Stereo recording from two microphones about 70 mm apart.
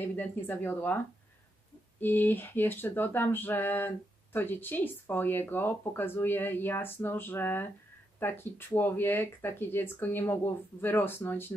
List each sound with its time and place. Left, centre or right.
0.0 s speech: left